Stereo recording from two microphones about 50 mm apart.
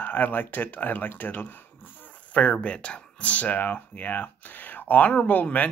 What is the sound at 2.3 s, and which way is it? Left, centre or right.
Speech, left.